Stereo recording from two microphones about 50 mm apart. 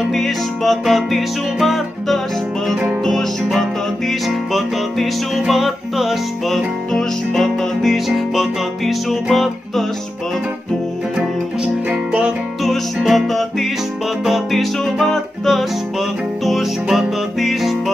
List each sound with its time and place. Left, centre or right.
0.1 s music: centre
11.1 s music: centre
12.6 s music: centre